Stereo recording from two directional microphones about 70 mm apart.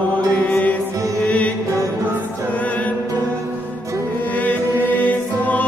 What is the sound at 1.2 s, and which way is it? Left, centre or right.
Mantra, centre.